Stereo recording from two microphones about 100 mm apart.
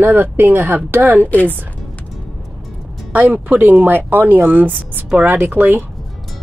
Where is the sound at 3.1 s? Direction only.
15° right (ahead or behind).